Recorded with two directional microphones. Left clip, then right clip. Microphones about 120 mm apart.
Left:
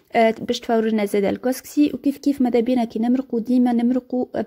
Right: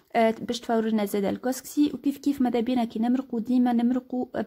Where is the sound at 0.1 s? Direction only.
25° left (ahead or behind).